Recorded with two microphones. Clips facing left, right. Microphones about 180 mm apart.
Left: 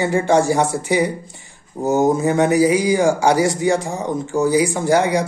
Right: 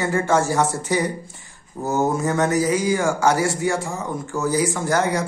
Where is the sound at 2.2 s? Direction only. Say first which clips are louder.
Left 5 dB; 15° left (ahead or behind).